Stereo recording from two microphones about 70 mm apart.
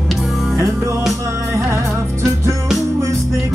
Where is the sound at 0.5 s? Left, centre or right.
Right.